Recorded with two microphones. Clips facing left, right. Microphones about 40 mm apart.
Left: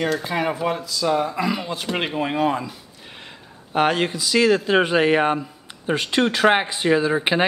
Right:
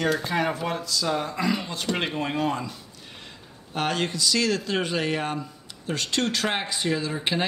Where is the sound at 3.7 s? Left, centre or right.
Centre.